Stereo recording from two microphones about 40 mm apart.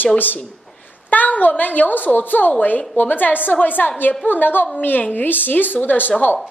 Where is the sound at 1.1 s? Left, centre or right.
Left.